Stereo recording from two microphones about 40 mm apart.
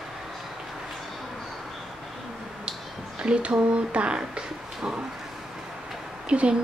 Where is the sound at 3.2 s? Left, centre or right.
Right.